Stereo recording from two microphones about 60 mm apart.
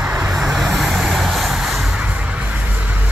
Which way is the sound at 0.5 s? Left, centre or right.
Centre.